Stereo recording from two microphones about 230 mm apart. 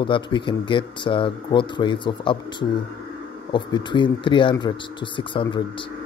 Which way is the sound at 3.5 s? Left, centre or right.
Left.